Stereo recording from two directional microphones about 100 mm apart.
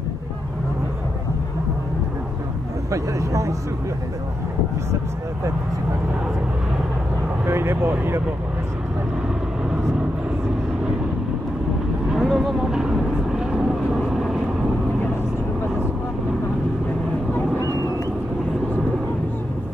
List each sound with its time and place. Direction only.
2.9 s speech: 30° right (ahead or behind)
7.4 s speech: 25° right (ahead or behind)
12.1 s vehicle: 5° right (ahead or behind)